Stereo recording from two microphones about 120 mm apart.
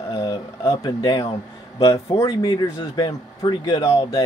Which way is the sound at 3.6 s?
35° left (ahead or behind).